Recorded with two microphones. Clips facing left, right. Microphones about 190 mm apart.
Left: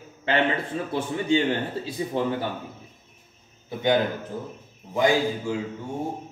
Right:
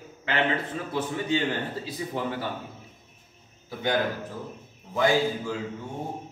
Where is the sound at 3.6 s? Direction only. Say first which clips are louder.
Left 4 dB; 20° left (ahead or behind).